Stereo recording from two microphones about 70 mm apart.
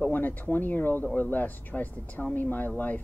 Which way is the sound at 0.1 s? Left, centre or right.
Left.